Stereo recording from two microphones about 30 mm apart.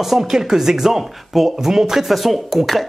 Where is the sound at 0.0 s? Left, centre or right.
Centre.